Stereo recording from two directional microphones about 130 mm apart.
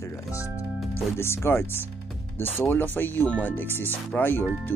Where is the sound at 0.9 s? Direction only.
20° left (ahead or behind).